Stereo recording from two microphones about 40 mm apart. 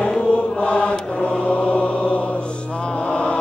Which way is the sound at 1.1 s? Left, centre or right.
Left.